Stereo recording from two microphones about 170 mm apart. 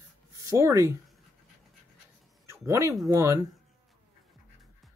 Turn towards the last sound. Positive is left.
turn(degrees=-15)  # may be behind; listen again after turning